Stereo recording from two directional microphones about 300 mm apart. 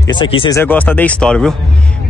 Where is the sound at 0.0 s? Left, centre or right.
Centre.